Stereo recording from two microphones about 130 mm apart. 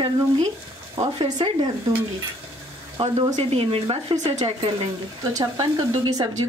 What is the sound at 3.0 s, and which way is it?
Speech, 50° right (ahead or behind).